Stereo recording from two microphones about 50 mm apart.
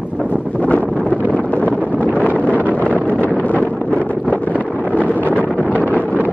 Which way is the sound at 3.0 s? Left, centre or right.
Left.